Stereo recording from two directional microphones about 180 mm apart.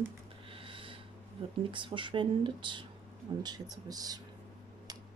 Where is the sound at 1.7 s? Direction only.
25° right (ahead or behind).